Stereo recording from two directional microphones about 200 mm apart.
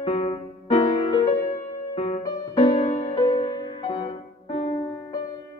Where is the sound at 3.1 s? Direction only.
25° left (ahead or behind).